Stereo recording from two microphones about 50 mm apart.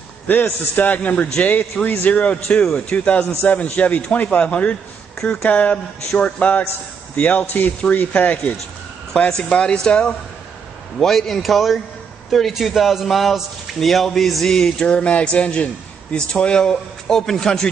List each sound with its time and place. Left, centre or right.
0.3 s a man's voice: left
9.4 s speech: centre
11.0 s a man's voice: centre